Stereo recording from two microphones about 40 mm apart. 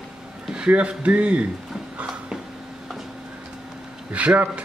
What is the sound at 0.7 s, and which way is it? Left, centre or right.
Speech, right.